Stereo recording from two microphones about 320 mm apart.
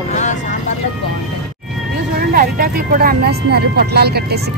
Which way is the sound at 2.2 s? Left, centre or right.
Right.